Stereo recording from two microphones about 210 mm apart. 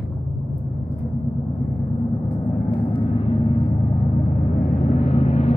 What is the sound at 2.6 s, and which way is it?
Vehicle, 25° left (ahead or behind).